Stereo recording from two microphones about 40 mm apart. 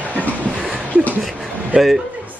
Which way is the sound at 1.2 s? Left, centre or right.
Centre.